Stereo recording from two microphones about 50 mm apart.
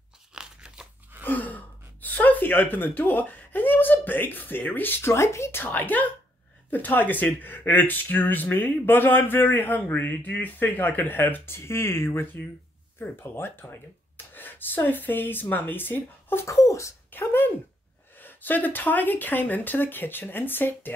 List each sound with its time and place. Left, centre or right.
0.3 s crunch: centre
1.2 s speech: left
5.1 s speech: left
5.6 s speech: left
11.5 s speech: left
16.4 s speech: left
17.1 s speech: left